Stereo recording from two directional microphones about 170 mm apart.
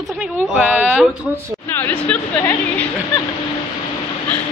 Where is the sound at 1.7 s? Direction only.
10° left (ahead or behind).